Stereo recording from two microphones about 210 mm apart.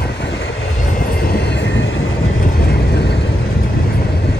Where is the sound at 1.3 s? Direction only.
55° left (ahead or behind).